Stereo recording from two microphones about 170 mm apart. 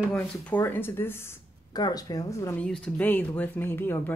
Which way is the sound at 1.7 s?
25° left (ahead or behind).